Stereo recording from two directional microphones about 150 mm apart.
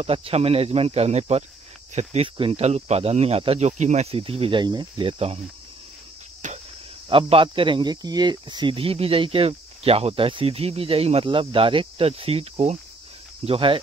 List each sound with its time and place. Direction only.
0.0 s speech: 40° right (ahead or behind)
6.4 s cricket: 55° right (ahead or behind)
7.1 s speech: 35° right (ahead or behind)